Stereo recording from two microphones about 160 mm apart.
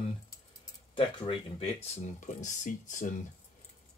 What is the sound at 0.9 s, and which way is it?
Speech, 35° left (ahead or behind).